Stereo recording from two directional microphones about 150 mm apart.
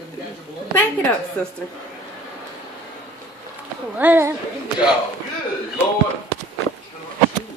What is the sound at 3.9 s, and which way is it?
Speech, 15° right (ahead or behind).